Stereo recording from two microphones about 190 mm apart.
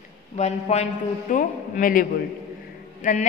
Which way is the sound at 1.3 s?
45° left (ahead or behind).